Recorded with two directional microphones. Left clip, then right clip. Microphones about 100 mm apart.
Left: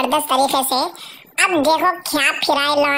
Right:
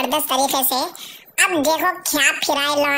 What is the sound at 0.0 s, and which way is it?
Speech, 25° left (ahead or behind).